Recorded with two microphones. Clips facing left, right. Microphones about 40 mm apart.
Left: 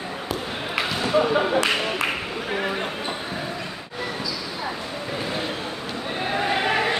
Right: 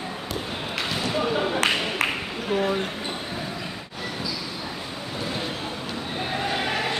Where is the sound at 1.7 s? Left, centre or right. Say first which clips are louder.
Left 2 dB; centre.